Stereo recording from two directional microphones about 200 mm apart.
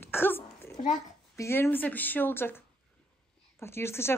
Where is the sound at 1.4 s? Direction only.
10° left (ahead or behind).